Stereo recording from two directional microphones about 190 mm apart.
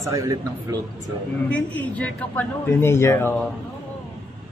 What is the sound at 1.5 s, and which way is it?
A man's voice, 10° left (ahead or behind).